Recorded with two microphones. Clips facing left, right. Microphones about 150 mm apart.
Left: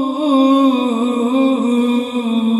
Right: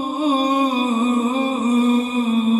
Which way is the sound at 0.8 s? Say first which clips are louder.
Left 3 dB; 20° left (ahead or behind).